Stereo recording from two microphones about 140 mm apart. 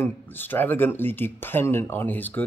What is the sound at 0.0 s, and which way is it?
A man's voice, 15° left (ahead or behind).